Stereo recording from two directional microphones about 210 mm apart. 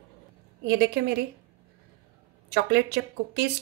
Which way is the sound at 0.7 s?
50° right (ahead or behind).